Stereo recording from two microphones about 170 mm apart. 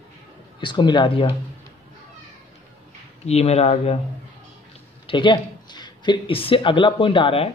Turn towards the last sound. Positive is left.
turn(degrees=30)  # may be behind; listen again after turning